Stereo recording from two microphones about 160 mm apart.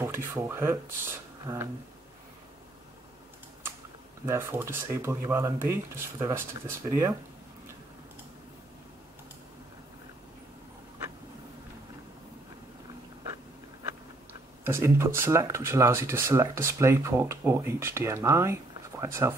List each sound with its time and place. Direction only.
0.0 s speech: 15° right (ahead or behind)
4.3 s speech: 15° right (ahead or behind)
14.6 s speech: 15° right (ahead or behind)